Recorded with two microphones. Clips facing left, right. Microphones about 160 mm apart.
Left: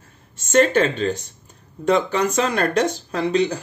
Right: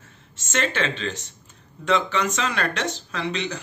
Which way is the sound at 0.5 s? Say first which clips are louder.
Left 9 dB; 45° left (ahead or behind).